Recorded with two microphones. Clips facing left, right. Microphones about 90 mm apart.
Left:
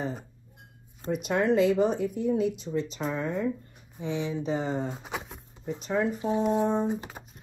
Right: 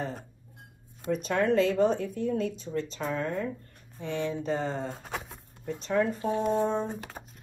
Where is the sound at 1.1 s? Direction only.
10° left (ahead or behind).